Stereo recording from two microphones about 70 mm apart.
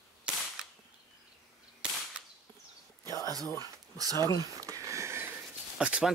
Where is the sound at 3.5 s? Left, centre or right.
Right.